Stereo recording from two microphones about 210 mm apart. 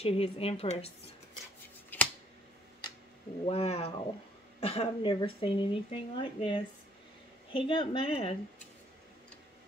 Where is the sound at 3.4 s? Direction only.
30° left (ahead or behind).